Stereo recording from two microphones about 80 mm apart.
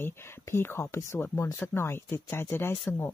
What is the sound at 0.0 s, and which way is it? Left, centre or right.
Speech, left.